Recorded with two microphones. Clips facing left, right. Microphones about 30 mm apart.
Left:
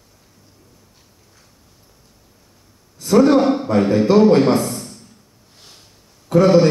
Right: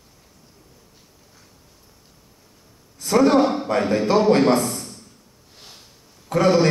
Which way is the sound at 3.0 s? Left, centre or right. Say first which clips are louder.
Left 3 dB; centre.